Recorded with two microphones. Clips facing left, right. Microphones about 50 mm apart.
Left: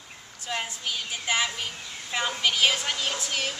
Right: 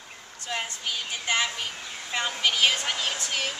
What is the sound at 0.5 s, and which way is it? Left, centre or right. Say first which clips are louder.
Speech: even; centre.